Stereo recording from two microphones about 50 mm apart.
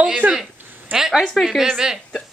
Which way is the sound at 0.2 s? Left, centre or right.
Right.